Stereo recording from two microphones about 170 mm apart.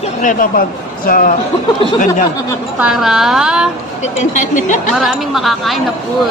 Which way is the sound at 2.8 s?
5° right (ahead or behind).